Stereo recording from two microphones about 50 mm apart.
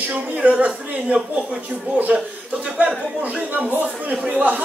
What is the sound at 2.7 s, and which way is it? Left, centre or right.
Speech, right.